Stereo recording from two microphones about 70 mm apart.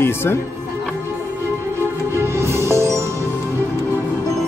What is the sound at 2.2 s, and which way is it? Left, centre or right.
Music, right.